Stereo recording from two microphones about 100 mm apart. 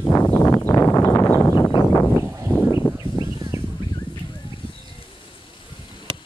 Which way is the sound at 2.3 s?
25° right (ahead or behind).